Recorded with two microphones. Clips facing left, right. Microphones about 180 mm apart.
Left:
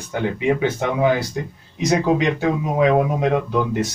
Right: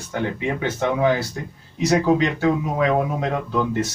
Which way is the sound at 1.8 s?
15° left (ahead or behind).